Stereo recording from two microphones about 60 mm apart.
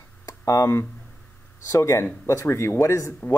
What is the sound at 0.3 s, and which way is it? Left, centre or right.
Speech, left.